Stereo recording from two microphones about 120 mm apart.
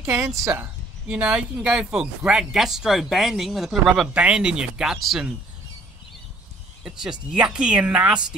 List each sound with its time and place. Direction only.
0.0 s speech: 20° right (ahead or behind)
1.0 s speech: 10° right (ahead or behind)
6.8 s speech: 5° right (ahead or behind)